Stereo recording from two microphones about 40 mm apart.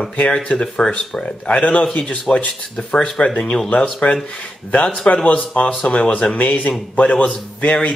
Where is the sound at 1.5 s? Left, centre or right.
Left.